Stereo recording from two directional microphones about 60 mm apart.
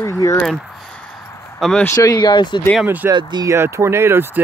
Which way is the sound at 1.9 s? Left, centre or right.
Left.